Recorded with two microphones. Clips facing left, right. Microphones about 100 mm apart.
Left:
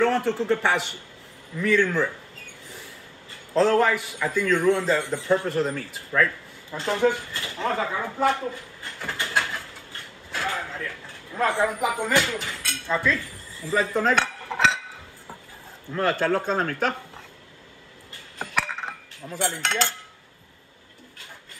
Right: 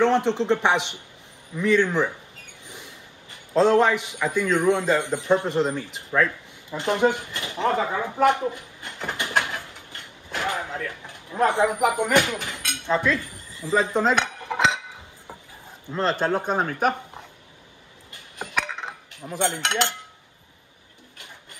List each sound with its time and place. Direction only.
0.0 s a man's voice: 20° right (ahead or behind)
1.6 s a sound: 20° right (ahead or behind)
4.1 s a man's voice: 20° right (ahead or behind)
9.4 s a sound: 20° right (ahead or behind)
10.9 s speech: 20° right (ahead or behind)
15.9 s a man's voice: 20° right (ahead or behind)
18.8 s chink: 20° right (ahead or behind)
19.5 s cutlery: 15° right (ahead or behind)